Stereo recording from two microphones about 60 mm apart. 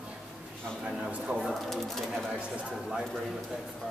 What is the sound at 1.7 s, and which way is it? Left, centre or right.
Bird, centre.